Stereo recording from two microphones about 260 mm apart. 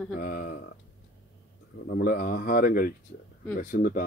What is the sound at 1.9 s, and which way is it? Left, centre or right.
Speech, left.